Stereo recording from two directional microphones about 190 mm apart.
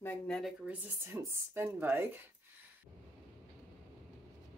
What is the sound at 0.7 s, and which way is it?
A woman's voice, 10° right (ahead or behind).